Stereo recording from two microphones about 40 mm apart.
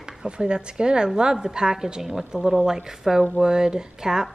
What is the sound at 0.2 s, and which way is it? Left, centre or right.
A woman's voice, right.